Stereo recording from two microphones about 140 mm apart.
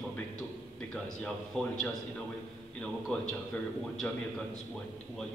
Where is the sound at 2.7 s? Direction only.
5° left (ahead or behind).